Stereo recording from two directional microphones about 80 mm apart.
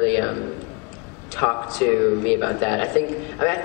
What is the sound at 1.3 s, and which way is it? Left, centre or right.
A man's voice, centre.